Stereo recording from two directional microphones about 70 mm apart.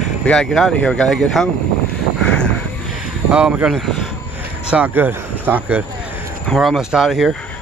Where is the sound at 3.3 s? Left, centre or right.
Centre.